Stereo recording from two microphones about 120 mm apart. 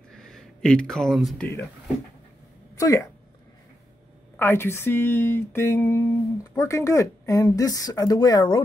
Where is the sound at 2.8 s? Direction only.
25° left (ahead or behind).